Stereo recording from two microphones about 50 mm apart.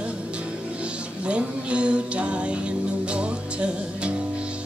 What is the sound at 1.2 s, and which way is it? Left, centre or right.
Music, right.